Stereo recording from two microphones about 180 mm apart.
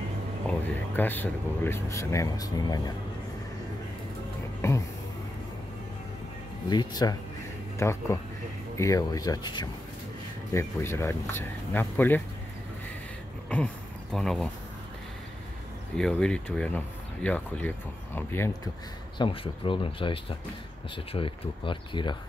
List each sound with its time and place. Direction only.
0.5 s speech: 10° left (ahead or behind)
4.6 s a sound: 15° left (ahead or behind)
6.7 s speech: 20° left (ahead or behind)
14.1 s speech: centre (ahead or behind)
16.0 s speech: 5° left (ahead or behind)
19.1 s speech: 30° left (ahead or behind)